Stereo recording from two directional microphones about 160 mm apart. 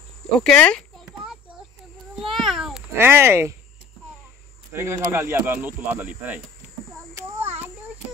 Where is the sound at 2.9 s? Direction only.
15° right (ahead or behind).